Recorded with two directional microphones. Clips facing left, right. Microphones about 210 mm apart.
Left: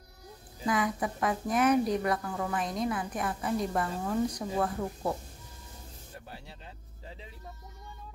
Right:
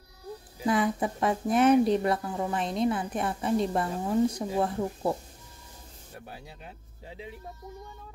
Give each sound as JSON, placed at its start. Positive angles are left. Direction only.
{"t": 0.7, "sound": "a woman's voice", "side_deg": -30}